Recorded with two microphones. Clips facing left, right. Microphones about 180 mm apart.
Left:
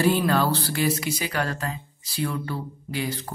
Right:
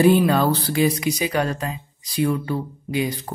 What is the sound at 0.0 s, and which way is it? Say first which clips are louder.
Speech: right 5 dB; 15° right (ahead or behind).